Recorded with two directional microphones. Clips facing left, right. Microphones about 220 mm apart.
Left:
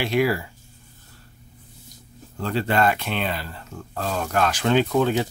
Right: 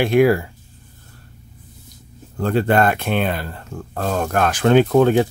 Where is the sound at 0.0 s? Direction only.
50° right (ahead or behind).